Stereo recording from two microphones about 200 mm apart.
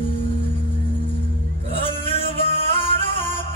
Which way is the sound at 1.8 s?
25° left (ahead or behind).